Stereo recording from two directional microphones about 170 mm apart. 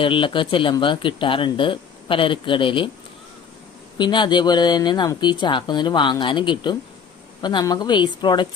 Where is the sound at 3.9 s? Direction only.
25° left (ahead or behind).